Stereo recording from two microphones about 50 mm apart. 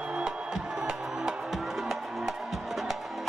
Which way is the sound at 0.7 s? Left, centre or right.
Centre.